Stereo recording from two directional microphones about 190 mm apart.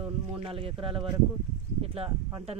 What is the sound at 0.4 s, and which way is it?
Speech, 30° right (ahead or behind).